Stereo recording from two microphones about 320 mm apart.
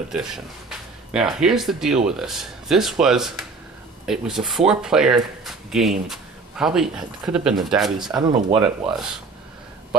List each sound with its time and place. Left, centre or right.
0.1 s speech: centre
8.2 s speech: centre
8.8 s speech: centre